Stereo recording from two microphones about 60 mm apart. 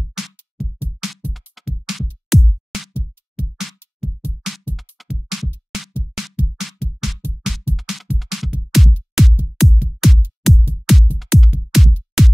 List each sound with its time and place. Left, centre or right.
0.0 s music: centre